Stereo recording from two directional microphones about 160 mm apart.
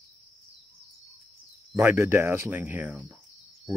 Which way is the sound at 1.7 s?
15° right (ahead or behind).